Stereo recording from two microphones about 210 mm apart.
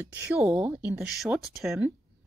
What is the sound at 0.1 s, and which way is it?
A woman's voice, 5° right (ahead or behind).